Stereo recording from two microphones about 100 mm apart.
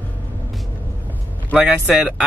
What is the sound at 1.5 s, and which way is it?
Speech, 5° right (ahead or behind).